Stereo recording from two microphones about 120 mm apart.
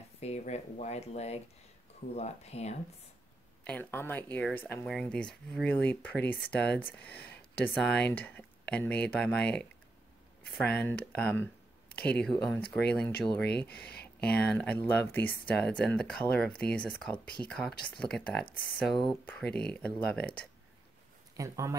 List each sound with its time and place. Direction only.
0.2 s speech: 65° left (ahead or behind)
3.6 s speech: 15° left (ahead or behind)
10.8 s speech: 15° left (ahead or behind)
15.5 s speech: 5° left (ahead or behind)
21.4 s speech: 25° right (ahead or behind)